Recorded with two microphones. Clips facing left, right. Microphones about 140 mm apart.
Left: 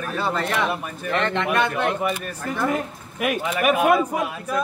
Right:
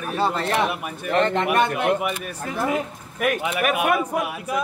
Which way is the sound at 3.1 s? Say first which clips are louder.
Right 1 dB; 5° left (ahead or behind).